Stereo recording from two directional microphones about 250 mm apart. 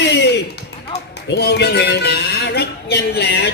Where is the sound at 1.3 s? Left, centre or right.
Left.